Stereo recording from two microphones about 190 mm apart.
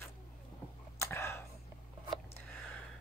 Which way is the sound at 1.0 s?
15° left (ahead or behind).